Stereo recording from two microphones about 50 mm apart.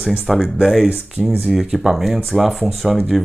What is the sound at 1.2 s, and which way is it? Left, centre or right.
Speech, right.